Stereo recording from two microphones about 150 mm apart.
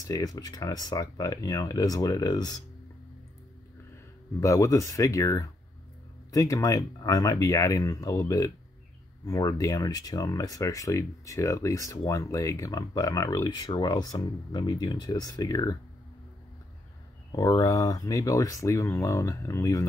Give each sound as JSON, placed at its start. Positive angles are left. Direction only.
{"t": 0.0, "sound": "speech", "side_deg": 25}
{"t": 3.9, "sound": "speech", "side_deg": 20}
{"t": 17.3, "sound": "speech", "side_deg": 25}